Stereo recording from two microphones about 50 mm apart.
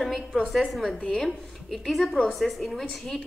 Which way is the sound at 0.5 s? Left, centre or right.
Centre.